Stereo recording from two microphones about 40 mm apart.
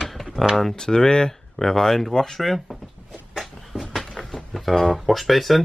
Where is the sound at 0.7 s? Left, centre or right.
Centre.